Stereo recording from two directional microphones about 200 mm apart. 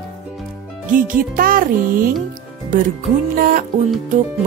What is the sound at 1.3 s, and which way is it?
Speech, 45° right (ahead or behind).